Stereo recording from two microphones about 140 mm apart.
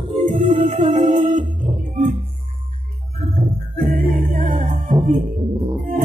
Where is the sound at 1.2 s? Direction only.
65° right (ahead or behind).